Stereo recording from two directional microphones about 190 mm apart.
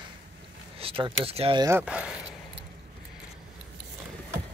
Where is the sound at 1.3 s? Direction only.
30° right (ahead or behind).